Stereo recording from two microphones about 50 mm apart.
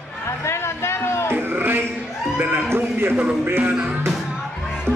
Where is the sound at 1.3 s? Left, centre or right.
Right.